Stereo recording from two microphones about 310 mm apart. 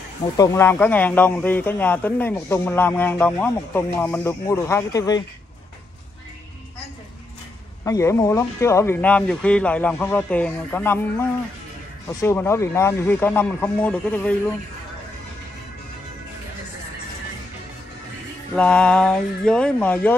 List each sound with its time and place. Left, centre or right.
0.4 s a man's voice: centre
7.8 s a man's voice: centre
18.5 s speech: centre